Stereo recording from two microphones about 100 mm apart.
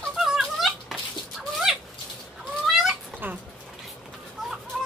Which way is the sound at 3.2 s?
20° right (ahead or behind).